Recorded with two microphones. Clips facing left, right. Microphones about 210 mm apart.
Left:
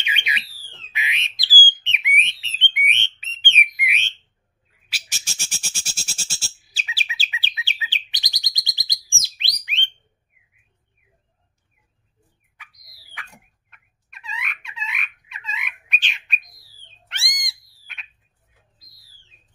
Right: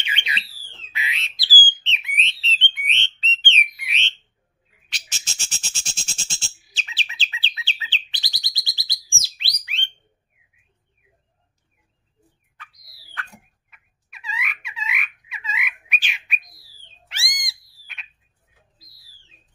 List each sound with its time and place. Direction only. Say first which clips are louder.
0.0 s alarm: left 1 dB; 15° left (ahead or behind)
0.9 s bird: left 1 dB; 20° left (ahead or behind)
1.7 s a sound: left 4 dB; 15° left (ahead or behind)
4.8 s cat: left 1 dB; 10° left (ahead or behind)
6.9 s bird: left 3 dB; 10° left (ahead or behind)
13.7 s frog: even; centre (ahead or behind)
17.1 s cat: even; centre (ahead or behind)